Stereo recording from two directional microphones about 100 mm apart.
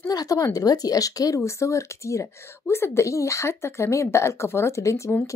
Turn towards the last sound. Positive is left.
turn(degrees=30)  # may be behind; listen again after turning